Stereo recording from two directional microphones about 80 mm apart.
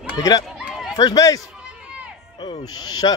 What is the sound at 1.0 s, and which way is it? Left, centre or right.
Speech, left.